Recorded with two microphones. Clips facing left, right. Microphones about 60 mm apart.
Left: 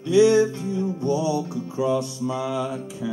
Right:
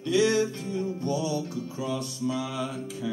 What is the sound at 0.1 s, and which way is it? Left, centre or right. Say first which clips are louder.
Music: left 7 dB; left.